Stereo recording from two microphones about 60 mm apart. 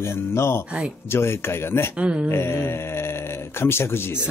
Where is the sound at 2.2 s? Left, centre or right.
Left.